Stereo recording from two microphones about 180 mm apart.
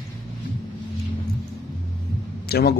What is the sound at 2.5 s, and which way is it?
Speech, 60° left (ahead or behind).